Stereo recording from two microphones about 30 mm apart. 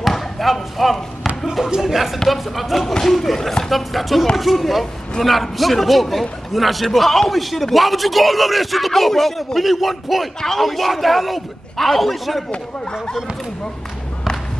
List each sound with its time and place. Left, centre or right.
0.1 s basketball bounce: centre
1.8 s a man's voice: centre
2.9 s a man's voice: centre
12.4 s speech: left